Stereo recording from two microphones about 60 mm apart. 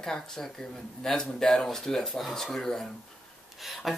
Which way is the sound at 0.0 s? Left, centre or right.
Centre.